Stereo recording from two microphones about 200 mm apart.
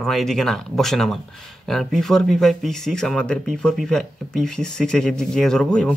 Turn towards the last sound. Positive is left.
turn(degrees=5)  # may be behind; listen again after turning